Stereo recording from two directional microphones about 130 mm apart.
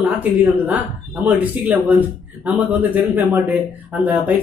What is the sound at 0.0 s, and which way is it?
A man's voice, 10° right (ahead or behind).